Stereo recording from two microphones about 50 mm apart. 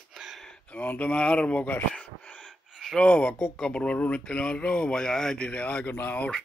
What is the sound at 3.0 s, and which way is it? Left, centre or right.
Speech, left.